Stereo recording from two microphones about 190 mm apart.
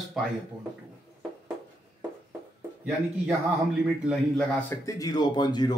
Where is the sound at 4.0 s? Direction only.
5° left (ahead or behind); by 5.8 s 20° left (ahead or behind).